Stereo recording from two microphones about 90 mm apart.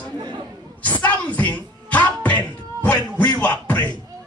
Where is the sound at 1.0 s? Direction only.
15° left (ahead or behind).